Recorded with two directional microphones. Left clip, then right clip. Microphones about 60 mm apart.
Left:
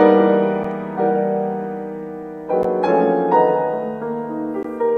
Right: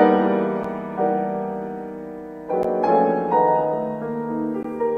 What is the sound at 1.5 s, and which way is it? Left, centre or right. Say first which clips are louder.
Music: left 4 dB; left.